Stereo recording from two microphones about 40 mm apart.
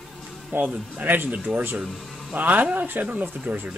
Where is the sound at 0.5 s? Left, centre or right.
Right.